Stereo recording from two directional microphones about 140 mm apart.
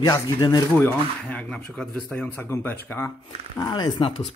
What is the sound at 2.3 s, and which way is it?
Speech, 15° left (ahead or behind).